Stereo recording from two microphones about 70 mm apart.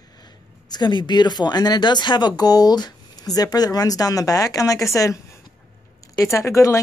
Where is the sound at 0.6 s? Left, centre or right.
Left.